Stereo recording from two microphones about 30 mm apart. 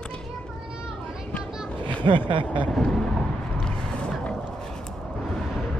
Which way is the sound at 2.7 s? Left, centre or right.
Centre.